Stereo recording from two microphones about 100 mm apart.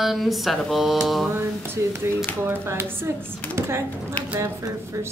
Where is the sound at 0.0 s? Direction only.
Centre (ahead or behind).